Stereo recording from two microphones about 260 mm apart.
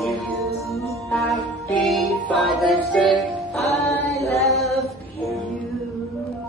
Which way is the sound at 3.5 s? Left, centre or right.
Left.